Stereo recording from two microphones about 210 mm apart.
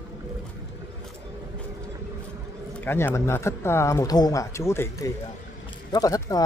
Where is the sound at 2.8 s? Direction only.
10° left (ahead or behind).